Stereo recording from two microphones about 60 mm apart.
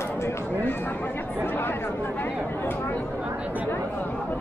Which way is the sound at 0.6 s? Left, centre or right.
Left.